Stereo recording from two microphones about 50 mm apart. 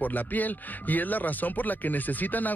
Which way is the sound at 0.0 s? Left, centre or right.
Left.